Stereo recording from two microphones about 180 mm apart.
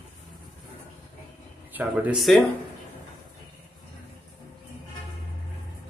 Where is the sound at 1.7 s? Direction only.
10° right (ahead or behind).